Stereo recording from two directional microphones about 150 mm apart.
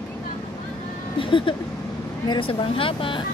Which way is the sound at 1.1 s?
35° left (ahead or behind).